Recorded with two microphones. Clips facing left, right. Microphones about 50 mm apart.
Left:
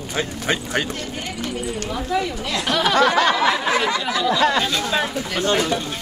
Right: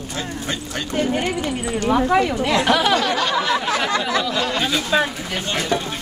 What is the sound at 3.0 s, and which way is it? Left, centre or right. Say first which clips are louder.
Snicker: left 4 dB; left.